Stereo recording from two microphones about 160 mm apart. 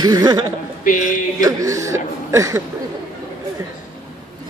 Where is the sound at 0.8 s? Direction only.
55° left (ahead or behind).